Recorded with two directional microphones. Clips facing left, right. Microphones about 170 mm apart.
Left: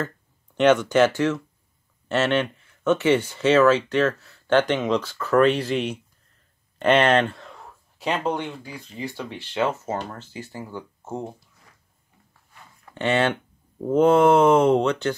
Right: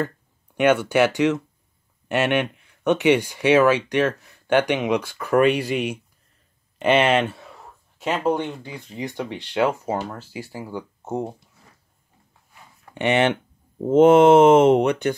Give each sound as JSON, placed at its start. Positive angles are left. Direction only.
{"t": 0.6, "sound": "speech", "side_deg": -10}
{"t": 12.9, "sound": "speech", "side_deg": -15}